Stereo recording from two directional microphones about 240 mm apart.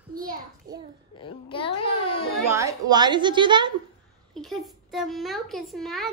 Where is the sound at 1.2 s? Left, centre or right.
Left.